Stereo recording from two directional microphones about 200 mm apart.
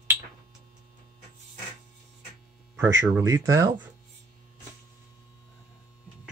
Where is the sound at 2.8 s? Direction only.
10° right (ahead or behind).